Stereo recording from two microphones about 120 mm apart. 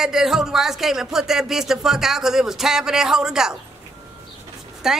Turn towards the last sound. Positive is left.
turn(degrees=-5)  # may be behind; listen again after turning